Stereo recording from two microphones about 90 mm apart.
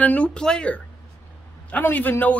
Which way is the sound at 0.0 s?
15° left (ahead or behind).